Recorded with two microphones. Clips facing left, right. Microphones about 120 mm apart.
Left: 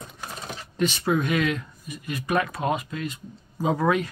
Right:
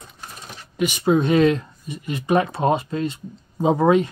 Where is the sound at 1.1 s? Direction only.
30° right (ahead or behind).